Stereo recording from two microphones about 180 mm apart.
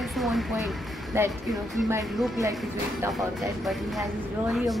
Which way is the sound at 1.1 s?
15° right (ahead or behind).